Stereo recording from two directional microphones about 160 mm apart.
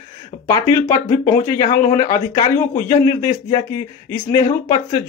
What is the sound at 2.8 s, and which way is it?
Speech, 20° left (ahead or behind).